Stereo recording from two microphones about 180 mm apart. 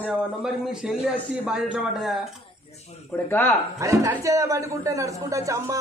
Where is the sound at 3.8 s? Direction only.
15° right (ahead or behind).